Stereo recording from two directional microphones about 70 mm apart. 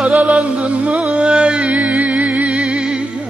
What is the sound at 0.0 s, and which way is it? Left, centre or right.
Music, centre.